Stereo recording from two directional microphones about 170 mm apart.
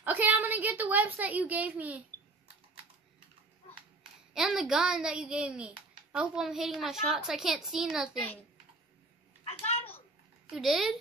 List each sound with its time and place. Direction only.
0.0 s a woman's voice: 10° right (ahead or behind)
4.3 s a child's voice: 5° right (ahead or behind)
9.4 s a sound: 35° left (ahead or behind)
10.5 s a child's voice: centre (ahead or behind)